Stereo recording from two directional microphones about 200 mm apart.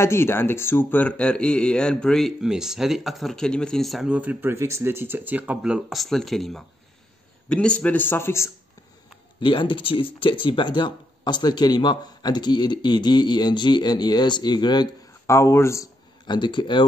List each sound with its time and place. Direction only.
0.0 s a man's voice: 10° left (ahead or behind)
9.4 s speech: 25° left (ahead or behind)